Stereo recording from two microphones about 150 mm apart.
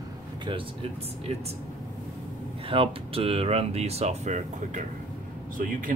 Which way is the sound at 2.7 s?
40° right (ahead or behind).